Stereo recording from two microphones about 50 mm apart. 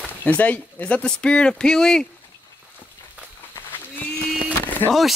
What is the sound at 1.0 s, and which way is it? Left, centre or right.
Speech, centre.